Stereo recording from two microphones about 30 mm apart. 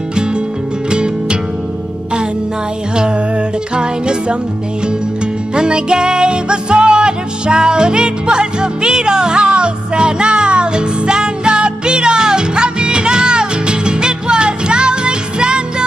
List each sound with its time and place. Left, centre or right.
0.8 s music: right
3.7 s music: right
5.5 s music: right